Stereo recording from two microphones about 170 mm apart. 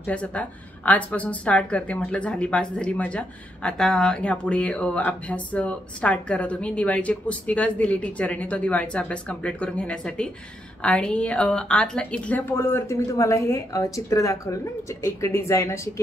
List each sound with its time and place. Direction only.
0.0 s a woman's voice: 10° left (ahead or behind)